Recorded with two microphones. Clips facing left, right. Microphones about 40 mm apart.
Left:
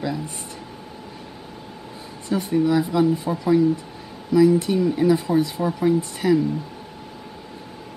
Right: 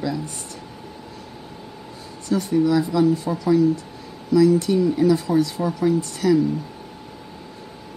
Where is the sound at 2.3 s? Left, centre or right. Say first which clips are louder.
Right 1 dB; left.